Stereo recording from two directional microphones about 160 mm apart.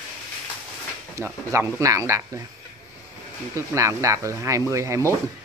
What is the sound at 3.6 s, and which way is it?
Speech, 20° right (ahead or behind).